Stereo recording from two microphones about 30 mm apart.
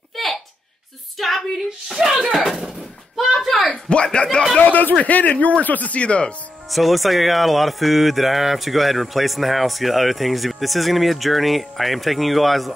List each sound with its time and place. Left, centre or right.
0.1 s a sound: centre
1.1 s female singing: centre
2.0 s speech: right
2.4 s a sound: centre
3.9 s speech: left
4.6 s a man's voice: left
5.0 s speech: left
5.9 s speech: left
6.7 s speech: centre